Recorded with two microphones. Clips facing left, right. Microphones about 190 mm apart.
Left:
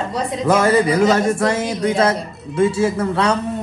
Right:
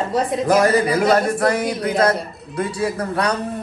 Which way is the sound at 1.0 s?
65° right (ahead or behind).